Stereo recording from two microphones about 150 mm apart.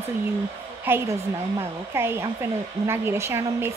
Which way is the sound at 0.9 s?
15° right (ahead or behind).